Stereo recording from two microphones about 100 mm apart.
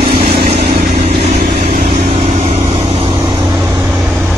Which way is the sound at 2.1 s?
90° right.